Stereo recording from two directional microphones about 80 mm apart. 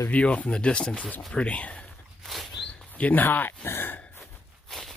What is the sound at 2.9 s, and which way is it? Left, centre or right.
Speech, left.